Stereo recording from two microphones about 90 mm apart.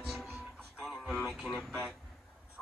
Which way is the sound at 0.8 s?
Centre (ahead or behind).